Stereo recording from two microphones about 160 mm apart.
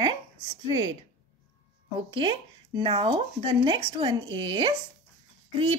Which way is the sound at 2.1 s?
30° right (ahead or behind).